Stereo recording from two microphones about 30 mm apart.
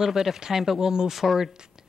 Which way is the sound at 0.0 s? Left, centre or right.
Centre.